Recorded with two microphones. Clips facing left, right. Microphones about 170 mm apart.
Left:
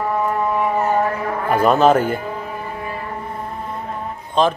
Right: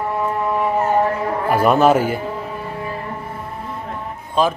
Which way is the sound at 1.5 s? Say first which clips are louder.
Even; 10° right (ahead or behind).